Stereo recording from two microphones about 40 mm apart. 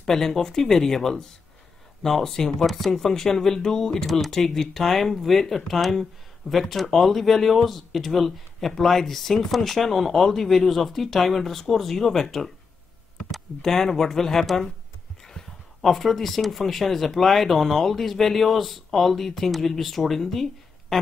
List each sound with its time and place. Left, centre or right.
0.0 s speech: centre
13.6 s speech: centre
20.9 s a sound: centre